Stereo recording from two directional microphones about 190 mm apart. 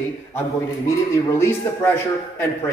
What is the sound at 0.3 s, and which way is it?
A man's voice, 10° left (ahead or behind).